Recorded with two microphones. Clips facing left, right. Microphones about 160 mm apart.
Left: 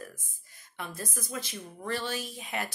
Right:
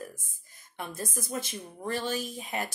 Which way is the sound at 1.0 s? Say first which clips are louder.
Right 5 dB; 45° right (ahead or behind).